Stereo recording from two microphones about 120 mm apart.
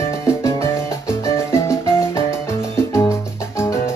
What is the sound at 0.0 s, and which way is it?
Music, 25° left (ahead or behind).